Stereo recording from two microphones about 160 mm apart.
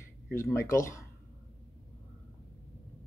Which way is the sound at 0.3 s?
15° left (ahead or behind).